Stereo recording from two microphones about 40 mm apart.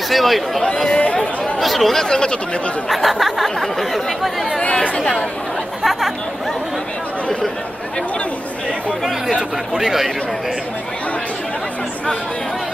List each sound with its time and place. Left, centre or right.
0.1 s speech: centre
0.9 s speech: left
1.6 s speech: centre
2.0 s speech: centre
2.9 s speech: centre
4.9 s speech: left
5.8 s chatter: centre
9.8 s speech: centre